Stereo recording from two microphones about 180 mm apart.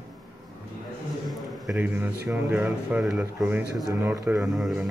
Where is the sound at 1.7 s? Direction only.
10° right (ahead or behind).